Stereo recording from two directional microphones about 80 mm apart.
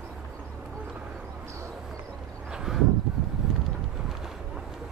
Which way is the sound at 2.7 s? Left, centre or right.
Centre.